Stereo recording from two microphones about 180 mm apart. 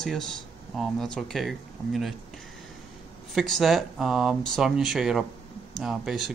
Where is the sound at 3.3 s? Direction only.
Centre (ahead or behind).